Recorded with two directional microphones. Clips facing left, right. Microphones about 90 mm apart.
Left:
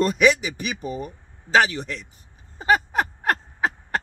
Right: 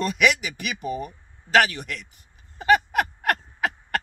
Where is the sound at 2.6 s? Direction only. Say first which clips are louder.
Right 1 dB; 30° left (ahead or behind).